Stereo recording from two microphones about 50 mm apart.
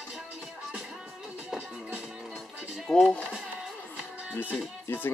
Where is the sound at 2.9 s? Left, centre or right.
Centre.